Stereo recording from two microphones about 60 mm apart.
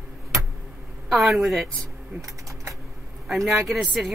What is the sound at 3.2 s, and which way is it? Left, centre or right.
Speech, centre.